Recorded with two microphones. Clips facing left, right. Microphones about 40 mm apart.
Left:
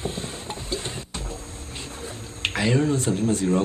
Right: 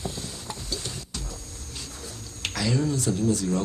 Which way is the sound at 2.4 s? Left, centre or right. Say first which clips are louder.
Left 4 dB; left.